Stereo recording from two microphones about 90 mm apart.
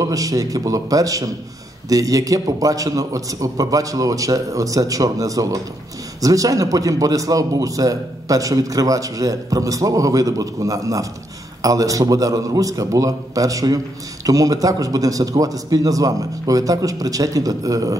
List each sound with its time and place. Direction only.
0.0 s a man's voice: 40° right (ahead or behind)